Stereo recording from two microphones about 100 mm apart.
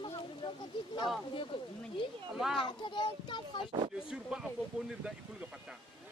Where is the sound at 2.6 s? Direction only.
55° left (ahead or behind).